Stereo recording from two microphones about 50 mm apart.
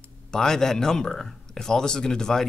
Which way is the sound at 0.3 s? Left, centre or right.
Centre.